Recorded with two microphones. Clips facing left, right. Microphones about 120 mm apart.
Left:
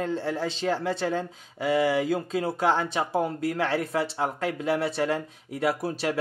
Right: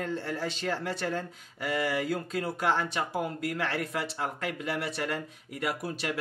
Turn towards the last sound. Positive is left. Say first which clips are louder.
# left 6 dB
turn(degrees=30)  # may be behind; listen again after turning